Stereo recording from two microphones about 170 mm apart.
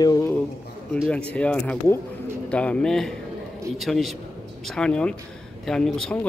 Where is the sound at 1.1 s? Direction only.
5° left (ahead or behind).